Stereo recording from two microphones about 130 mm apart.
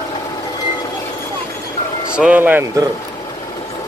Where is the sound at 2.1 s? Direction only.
10° right (ahead or behind).